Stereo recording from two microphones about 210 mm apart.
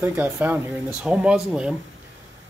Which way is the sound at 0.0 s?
10° right (ahead or behind).